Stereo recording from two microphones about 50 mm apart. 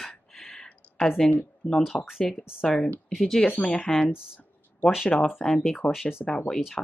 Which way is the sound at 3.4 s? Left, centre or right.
Left.